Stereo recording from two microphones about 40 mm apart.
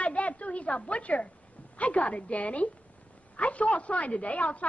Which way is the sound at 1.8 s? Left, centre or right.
Left.